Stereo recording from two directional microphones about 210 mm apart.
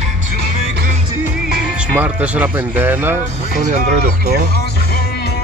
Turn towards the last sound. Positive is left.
turn(degrees=-35)  # may be behind; listen again after turning